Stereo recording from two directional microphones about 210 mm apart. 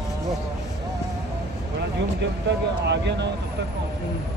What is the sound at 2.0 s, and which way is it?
Speech, 55° right (ahead or behind).